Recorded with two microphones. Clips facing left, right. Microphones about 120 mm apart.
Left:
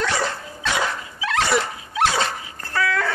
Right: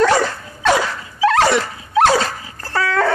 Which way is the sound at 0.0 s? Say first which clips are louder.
Right 9 dB; 50° right (ahead or behind).